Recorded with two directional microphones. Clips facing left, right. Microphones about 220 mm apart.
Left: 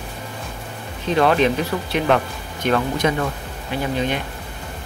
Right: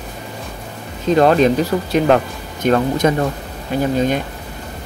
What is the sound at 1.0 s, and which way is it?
Speech, 40° right (ahead or behind).